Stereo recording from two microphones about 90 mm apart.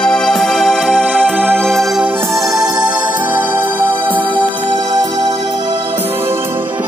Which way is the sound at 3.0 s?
20° right (ahead or behind).